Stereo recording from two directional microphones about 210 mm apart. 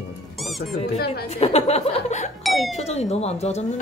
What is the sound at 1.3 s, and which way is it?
Speech, 30° left (ahead or behind).